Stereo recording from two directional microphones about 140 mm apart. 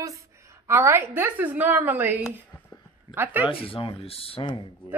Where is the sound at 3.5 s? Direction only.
40° left (ahead or behind).